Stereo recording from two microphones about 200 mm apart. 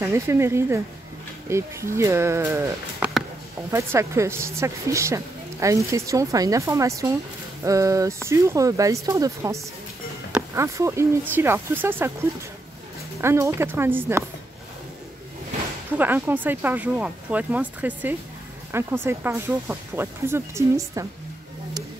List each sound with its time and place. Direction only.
0.0 s a woman's voice: 15° right (ahead or behind)
13.2 s a woman's voice: 15° right (ahead or behind)
16.0 s a woman's voice: 10° right (ahead or behind)